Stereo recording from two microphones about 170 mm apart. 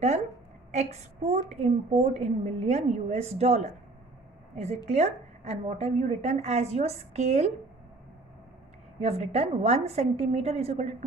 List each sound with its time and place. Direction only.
0.7 s a woman's voice: 40° right (ahead or behind)
9.0 s a woman's voice: 40° right (ahead or behind)